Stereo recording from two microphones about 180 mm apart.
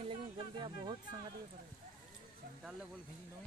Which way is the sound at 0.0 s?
30° right (ahead or behind).